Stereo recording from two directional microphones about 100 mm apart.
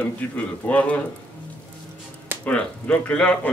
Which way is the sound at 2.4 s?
10° left (ahead or behind).